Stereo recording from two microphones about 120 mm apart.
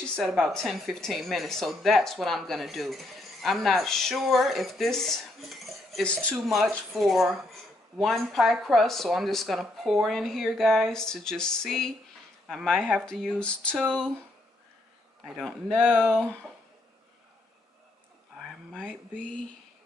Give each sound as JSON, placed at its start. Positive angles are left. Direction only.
{"t": 0.0, "sound": "speech", "side_deg": 5}
{"t": 15.2, "sound": "speech", "side_deg": -5}
{"t": 18.7, "sound": "speech", "side_deg": 5}